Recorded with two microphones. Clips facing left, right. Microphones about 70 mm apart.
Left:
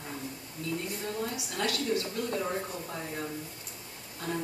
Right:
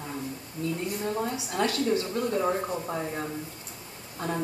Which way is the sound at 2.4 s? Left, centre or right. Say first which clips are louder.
Right 6 dB; right.